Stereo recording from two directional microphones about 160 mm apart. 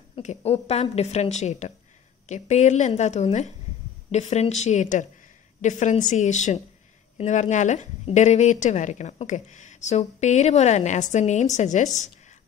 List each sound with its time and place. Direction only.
0.2 s a woman's voice: 45° left (ahead or behind)